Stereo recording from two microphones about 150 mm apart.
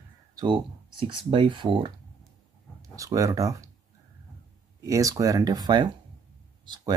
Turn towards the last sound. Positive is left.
turn(degrees=-30)  # may be behind; listen again after turning